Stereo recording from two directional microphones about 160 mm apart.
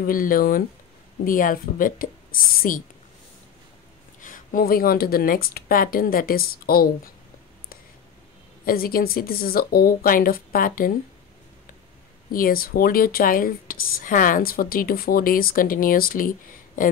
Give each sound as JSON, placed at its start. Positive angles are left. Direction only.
{"t": 0.0, "sound": "speech", "side_deg": 60}
{"t": 4.2, "sound": "speech", "side_deg": 60}
{"t": 8.6, "sound": "speech", "side_deg": 65}
{"t": 12.3, "sound": "speech", "side_deg": 65}